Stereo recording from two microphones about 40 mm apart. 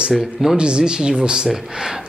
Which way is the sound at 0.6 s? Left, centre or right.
Right.